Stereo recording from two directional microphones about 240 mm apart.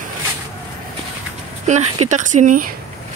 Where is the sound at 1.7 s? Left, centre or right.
Right.